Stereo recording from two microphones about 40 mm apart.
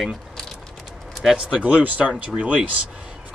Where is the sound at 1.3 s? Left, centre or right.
Right.